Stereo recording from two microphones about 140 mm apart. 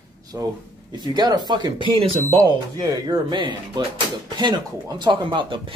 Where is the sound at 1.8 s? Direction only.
40° right (ahead or behind).